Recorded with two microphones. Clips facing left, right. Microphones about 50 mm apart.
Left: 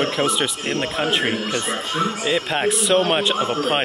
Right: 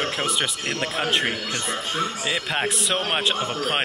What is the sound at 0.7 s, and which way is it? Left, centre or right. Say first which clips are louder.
Speech: left 3 dB; left.